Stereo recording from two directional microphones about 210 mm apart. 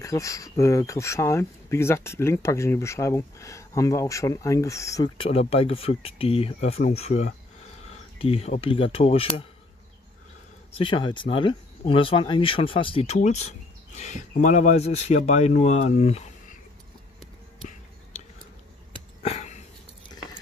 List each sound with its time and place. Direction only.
0.0 s speech: 15° left (ahead or behind)
10.8 s speech: 20° left (ahead or behind)
19.2 s a sound: 35° left (ahead or behind)